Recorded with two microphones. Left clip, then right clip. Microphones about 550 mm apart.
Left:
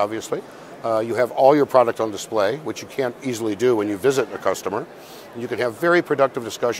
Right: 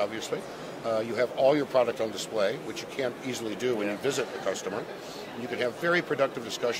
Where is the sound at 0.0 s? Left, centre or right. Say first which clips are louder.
Left 7 dB; left.